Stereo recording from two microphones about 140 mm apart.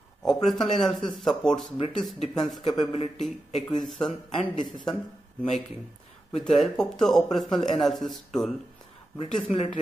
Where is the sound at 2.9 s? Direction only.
45° left (ahead or behind).